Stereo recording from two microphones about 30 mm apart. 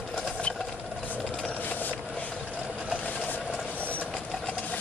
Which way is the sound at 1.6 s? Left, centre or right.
Left.